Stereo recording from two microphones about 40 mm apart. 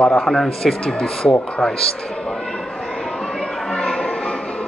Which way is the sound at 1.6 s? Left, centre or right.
Centre.